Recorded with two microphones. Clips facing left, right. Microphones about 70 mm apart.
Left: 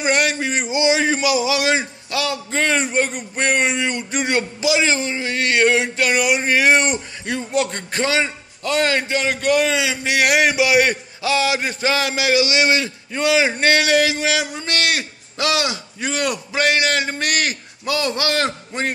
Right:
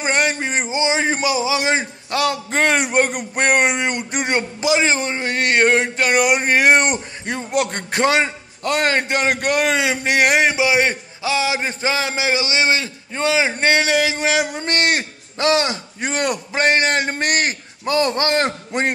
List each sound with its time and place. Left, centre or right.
0.0 s a man's voice: right
2.8 s a man's voice: right
9.0 s a man's voice: right; by 14.1 s centre
14.1 s a man's voice: right
18.7 s a man's voice: right